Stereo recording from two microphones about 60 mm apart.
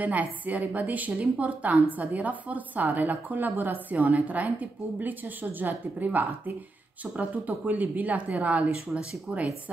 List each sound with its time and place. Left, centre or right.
0.0 s a woman's voice: right